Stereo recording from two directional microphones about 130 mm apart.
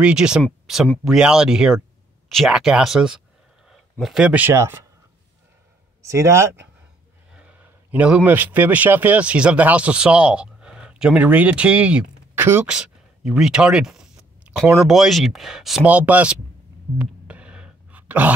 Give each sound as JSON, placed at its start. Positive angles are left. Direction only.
{"t": 0.0, "sound": "speech", "side_deg": -5}
{"t": 6.0, "sound": "speech", "side_deg": -20}
{"t": 7.3, "sound": "speech", "side_deg": -10}
{"t": 17.0, "sound": "throat clearing", "side_deg": -10}